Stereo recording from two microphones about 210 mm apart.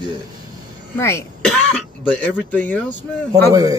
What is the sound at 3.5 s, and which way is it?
Speech, 15° right (ahead or behind).